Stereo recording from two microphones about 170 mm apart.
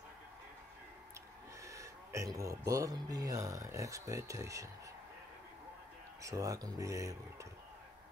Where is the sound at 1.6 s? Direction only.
20° right (ahead or behind).